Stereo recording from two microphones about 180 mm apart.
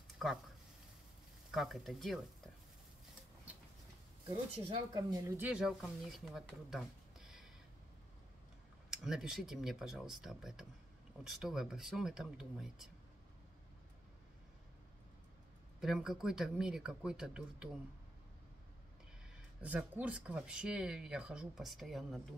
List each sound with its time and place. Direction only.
1.5 s speech: centre (ahead or behind)
4.9 s speech: 20° right (ahead or behind)
5.4 s speech: 5° right (ahead or behind)
8.9 s speech: 5° right (ahead or behind)
15.8 s speech: 5° right (ahead or behind)
19.6 s speech: 10° right (ahead or behind)